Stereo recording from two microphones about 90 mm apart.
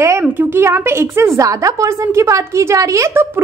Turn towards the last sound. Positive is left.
turn(degrees=-30)  # may be behind; listen again after turning